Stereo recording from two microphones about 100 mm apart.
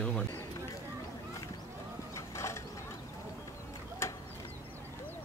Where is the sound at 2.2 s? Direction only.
30° left (ahead or behind).